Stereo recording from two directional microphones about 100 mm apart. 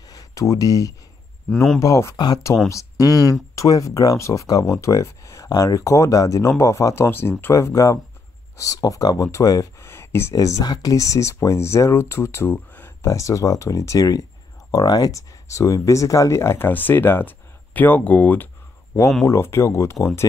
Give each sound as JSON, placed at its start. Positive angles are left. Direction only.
{"t": 0.1, "sound": "speech", "side_deg": 35}
{"t": 1.5, "sound": "speech", "side_deg": 5}
{"t": 1.8, "sound": "speech", "side_deg": 30}
{"t": 2.1, "sound": "speech", "side_deg": 45}
{"t": 9.8, "sound": "a sound", "side_deg": 25}
{"t": 10.3, "sound": "speech", "side_deg": 35}